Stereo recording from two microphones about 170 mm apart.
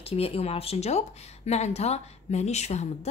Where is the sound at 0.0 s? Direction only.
35° left (ahead or behind).